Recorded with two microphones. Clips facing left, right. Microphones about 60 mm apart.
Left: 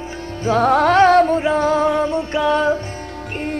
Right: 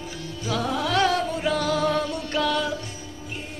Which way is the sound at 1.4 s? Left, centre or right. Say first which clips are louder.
Left 7 dB; left.